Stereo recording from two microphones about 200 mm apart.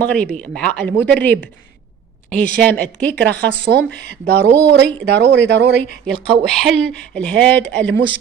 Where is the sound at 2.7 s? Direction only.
5° left (ahead or behind).